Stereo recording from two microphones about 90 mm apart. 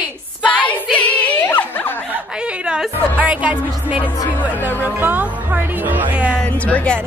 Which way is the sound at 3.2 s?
15° right (ahead or behind).